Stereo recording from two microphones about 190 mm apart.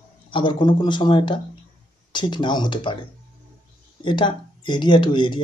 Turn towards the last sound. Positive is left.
turn(degrees=25)  # may be behind; listen again after turning